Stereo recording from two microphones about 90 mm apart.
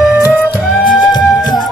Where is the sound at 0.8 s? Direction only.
55° left (ahead or behind).